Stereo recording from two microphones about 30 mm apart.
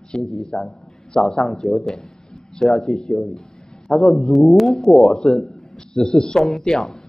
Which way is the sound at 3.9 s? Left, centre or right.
Left.